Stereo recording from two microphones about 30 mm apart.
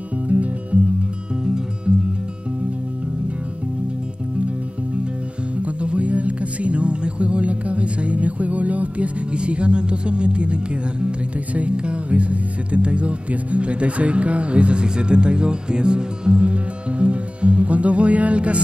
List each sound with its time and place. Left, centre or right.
0.3 s music: right
5.6 s music: right
9.3 s music: right
11.5 s speech: right